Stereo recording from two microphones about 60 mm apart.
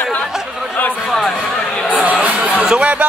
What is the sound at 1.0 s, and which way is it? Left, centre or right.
Speech, centre.